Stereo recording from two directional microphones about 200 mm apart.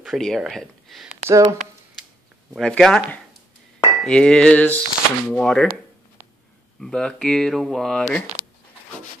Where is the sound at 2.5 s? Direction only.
Centre (ahead or behind).